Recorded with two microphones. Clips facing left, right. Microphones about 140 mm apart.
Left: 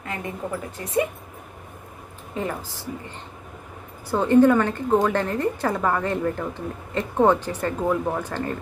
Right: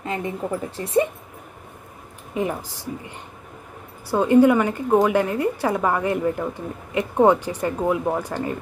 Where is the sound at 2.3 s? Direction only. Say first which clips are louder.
Right 3 dB; 15° right (ahead or behind).